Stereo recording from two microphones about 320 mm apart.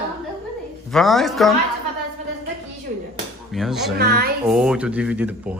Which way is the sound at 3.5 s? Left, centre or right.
Centre.